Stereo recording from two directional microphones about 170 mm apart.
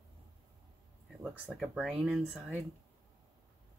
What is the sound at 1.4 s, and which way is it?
Speech, centre (ahead or behind).